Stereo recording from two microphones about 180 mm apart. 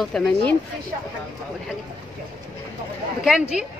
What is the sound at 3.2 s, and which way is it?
Speech, 5° right (ahead or behind).